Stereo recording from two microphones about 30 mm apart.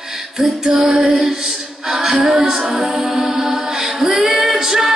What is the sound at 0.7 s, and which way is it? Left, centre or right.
Female singing, centre.